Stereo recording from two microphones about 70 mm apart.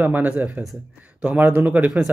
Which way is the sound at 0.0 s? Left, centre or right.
Right.